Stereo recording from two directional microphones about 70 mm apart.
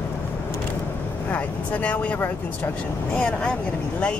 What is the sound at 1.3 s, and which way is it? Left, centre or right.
Speech, left.